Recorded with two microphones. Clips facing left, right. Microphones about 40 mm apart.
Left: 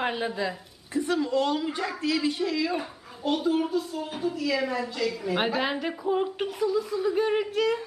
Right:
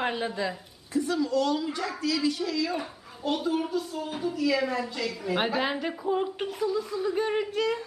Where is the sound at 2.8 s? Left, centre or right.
Centre.